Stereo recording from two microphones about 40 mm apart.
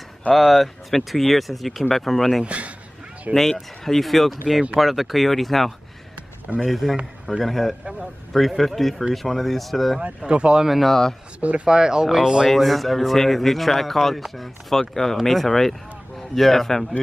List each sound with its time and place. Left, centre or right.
0.3 s speech: centre
2.4 s a man's voice: right
3.8 s speech: centre
10.2 s speech: right
10.8 s speech: centre
11.6 s speech: centre
12.4 s speech: centre